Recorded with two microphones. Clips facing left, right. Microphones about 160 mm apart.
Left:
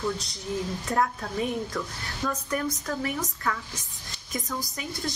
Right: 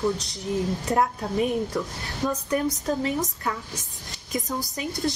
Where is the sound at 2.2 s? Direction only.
20° right (ahead or behind).